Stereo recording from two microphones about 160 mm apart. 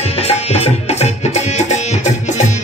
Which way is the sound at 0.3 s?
40° left (ahead or behind).